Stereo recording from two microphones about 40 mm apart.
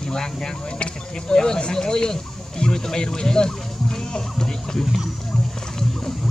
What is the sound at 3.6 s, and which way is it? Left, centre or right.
Music, centre.